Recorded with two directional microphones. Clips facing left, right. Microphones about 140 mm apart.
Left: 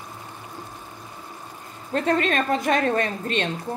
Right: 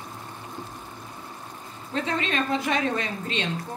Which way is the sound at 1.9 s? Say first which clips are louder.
Left 5 dB; 50° left (ahead or behind).